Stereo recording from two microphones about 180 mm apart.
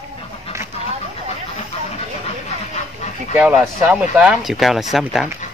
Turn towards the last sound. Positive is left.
turn(degrees=0)  # may be behind; listen again after turning